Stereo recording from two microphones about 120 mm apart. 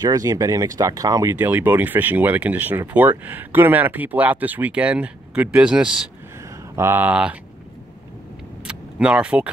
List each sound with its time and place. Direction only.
0.0 s speech: 30° right (ahead or behind)
1.4 s speech: 15° right (ahead or behind)
6.7 s speech: 20° right (ahead or behind)
8.6 s vehicle: 10° right (ahead or behind)